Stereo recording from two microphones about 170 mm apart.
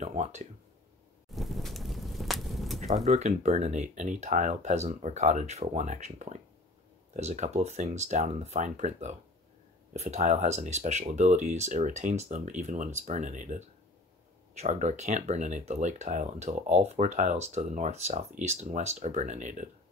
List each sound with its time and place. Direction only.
0.0 s speech: 45° right (ahead or behind)
1.3 s a sound: centre (ahead or behind)
2.8 s speech: 40° right (ahead or behind)